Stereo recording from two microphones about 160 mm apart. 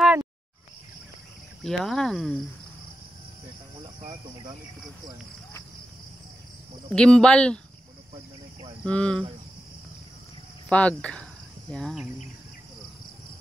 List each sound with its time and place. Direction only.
1.6 s speech: 5° left (ahead or behind)
6.9 s speech: 5° left (ahead or behind)
8.1 s a sound: 35° right (ahead or behind)
8.8 s speech: 5° left (ahead or behind)
10.7 s speech: 10° left (ahead or behind)